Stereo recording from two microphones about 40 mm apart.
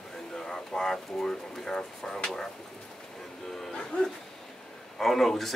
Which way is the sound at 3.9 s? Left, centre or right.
Left.